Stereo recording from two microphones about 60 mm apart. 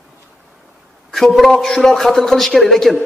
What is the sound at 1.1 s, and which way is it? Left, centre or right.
A man's voice, centre.